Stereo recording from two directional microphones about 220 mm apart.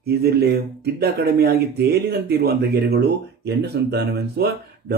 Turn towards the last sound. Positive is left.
turn(degrees=-45)  # may be behind; listen again after turning